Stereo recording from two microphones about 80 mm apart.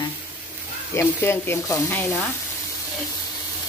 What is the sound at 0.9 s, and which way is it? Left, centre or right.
Speech, left.